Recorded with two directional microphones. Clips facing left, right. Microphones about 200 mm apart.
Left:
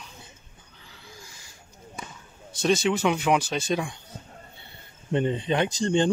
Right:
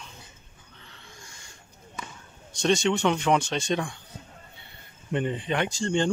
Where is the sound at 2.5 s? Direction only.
5° left (ahead or behind).